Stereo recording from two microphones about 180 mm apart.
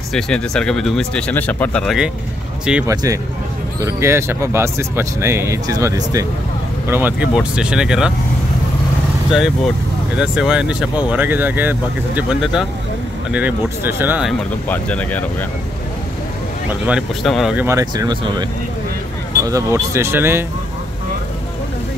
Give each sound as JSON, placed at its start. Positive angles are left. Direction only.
{"t": 0.1, "sound": "speech", "side_deg": 5}
{"t": 2.9, "sound": "speech", "side_deg": -15}
{"t": 10.1, "sound": "speech", "side_deg": -5}
{"t": 14.7, "sound": "speech", "side_deg": 10}
{"t": 16.8, "sound": "speech", "side_deg": 0}
{"t": 17.6, "sound": "speech", "side_deg": -20}